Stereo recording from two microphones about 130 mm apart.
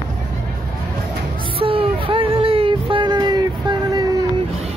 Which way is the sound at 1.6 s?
45° right (ahead or behind).